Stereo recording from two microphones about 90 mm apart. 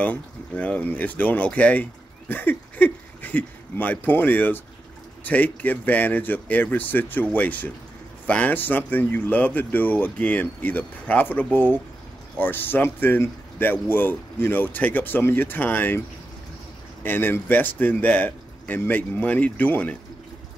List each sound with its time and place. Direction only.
0.0 s speech: 20° left (ahead or behind)
17.0 s speech: 25° left (ahead or behind)